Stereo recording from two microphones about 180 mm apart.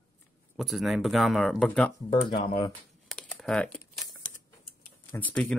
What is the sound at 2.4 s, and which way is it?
Speech, 30° left (ahead or behind).